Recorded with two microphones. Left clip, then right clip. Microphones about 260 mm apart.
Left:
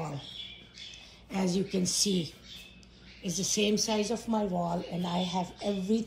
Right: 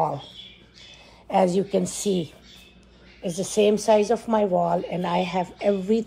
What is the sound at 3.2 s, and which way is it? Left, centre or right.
Speech, right.